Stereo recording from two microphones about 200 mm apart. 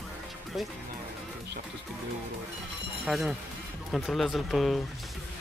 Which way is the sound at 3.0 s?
Centre (ahead or behind).